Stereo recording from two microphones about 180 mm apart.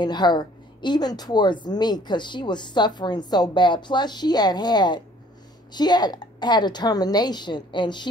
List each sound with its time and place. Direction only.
0.0 s a woman's voice: 25° left (ahead or behind)